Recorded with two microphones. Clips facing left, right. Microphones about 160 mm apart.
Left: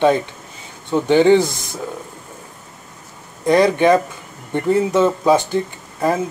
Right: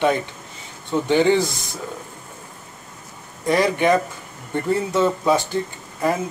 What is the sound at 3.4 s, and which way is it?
Speech, 20° left (ahead or behind).